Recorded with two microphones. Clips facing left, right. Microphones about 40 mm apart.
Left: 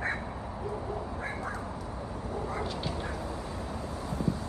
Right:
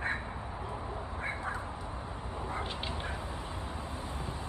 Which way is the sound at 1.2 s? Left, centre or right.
Right.